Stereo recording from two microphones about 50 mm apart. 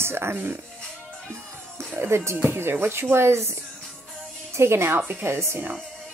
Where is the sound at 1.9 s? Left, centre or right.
Right.